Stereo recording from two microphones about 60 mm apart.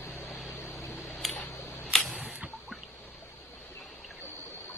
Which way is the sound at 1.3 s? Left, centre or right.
Left.